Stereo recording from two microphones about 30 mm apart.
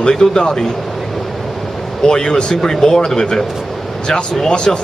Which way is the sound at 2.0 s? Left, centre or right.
Left.